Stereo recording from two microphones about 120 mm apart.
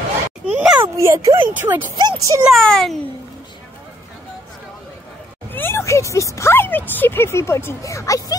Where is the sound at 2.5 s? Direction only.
5° left (ahead or behind).